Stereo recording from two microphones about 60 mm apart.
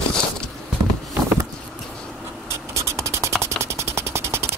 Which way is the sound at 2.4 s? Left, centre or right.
Right.